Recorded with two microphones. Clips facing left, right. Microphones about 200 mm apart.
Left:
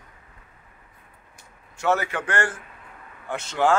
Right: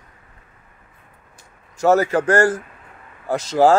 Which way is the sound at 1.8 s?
40° right (ahead or behind).